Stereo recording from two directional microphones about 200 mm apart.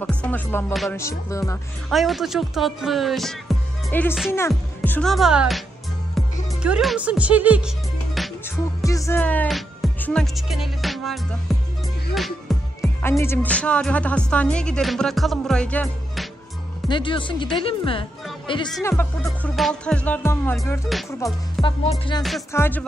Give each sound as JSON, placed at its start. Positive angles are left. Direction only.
{"t": 0.0, "sound": "speech", "side_deg": 5}
{"t": 1.9, "sound": "speech", "side_deg": 0}
{"t": 6.2, "sound": "music", "side_deg": 0}
{"t": 6.6, "sound": "speech", "side_deg": -5}
{"t": 8.8, "sound": "speech", "side_deg": 15}
{"t": 12.1, "sound": "music", "side_deg": 0}
{"t": 13.2, "sound": "speech", "side_deg": 10}
{"t": 16.9, "sound": "speech", "side_deg": 25}
{"t": 18.8, "sound": "speech", "side_deg": 15}
{"t": 22.5, "sound": "speech", "side_deg": 10}